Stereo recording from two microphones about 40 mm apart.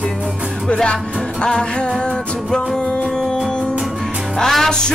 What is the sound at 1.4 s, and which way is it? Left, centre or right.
Music, left.